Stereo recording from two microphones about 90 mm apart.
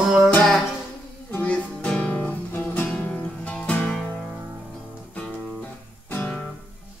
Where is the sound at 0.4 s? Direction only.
5° left (ahead or behind).